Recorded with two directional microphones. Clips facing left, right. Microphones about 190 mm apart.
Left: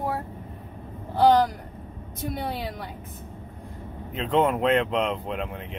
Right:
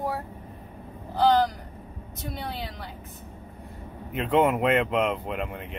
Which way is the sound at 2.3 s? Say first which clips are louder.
Left 4 dB; 55° left (ahead or behind).